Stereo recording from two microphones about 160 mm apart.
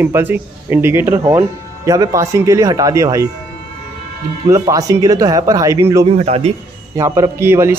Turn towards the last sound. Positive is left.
turn(degrees=-15)  # may be behind; listen again after turning